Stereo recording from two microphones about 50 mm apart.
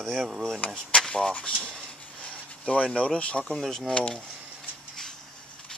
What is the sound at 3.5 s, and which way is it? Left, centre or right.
Speech, centre.